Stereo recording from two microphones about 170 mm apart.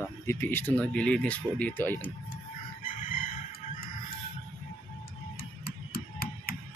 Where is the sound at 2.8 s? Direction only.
55° left (ahead or behind).